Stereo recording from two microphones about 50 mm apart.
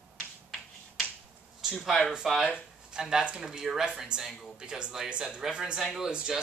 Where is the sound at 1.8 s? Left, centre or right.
Centre.